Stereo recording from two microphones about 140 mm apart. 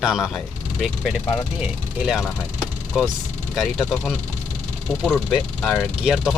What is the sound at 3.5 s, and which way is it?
Speech, centre (ahead or behind).